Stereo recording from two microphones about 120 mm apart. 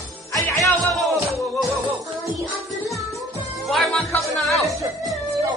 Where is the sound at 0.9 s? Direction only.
Centre (ahead or behind).